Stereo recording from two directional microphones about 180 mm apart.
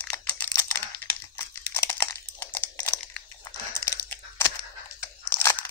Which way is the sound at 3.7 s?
15° left (ahead or behind).